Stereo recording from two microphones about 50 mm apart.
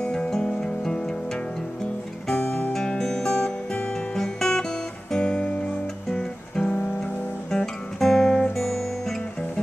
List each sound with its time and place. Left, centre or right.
0.0 s music: centre
2.4 s music: left
2.7 s music: centre
6.1 s guitar: centre